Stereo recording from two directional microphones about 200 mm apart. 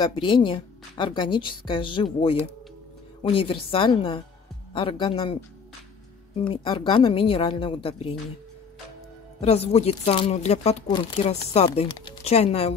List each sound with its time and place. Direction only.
0.0 s speech: 25° left (ahead or behind)
3.2 s speech: 25° left (ahead or behind)
6.4 s speech: 25° left (ahead or behind)
9.4 s speech: 30° left (ahead or behind)